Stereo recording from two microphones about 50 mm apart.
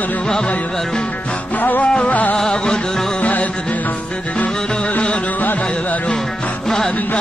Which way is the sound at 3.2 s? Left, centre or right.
Left.